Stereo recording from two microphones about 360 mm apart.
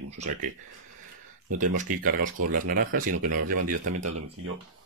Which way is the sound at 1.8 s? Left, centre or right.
Right.